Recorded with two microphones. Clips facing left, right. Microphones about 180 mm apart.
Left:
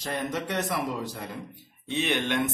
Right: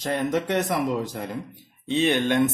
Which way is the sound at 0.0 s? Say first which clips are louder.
Right 6 dB; 50° right (ahead or behind).